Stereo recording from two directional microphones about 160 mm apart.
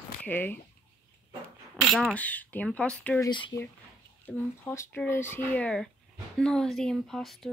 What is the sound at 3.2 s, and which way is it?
Speech, 30° left (ahead or behind).